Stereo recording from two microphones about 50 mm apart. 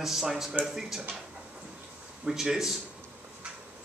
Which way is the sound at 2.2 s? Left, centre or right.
Centre.